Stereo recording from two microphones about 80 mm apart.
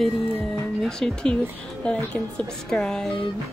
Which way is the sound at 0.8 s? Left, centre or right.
Centre.